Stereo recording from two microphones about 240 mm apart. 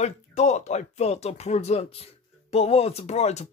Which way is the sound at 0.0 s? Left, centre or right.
Left.